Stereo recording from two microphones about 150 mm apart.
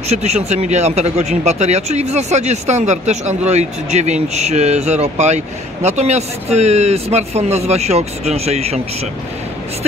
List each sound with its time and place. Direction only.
0.1 s speech: 45° right (ahead or behind)